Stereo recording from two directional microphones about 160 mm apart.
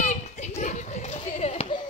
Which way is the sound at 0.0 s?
45° left (ahead or behind).